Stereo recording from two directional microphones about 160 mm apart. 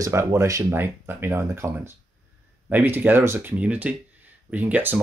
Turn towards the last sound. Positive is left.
turn(degrees=-10)  # may be behind; listen again after turning